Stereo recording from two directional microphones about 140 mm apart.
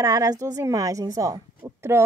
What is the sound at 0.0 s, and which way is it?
A woman's voice, 25° right (ahead or behind).